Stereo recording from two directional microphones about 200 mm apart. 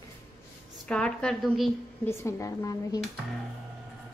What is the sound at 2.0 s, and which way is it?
Speech, 15° left (ahead or behind).